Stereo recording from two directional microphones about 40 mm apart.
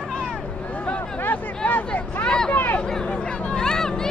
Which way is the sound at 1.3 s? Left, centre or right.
Left.